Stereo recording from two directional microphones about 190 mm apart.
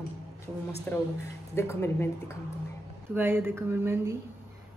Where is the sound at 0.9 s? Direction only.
10° left (ahead or behind).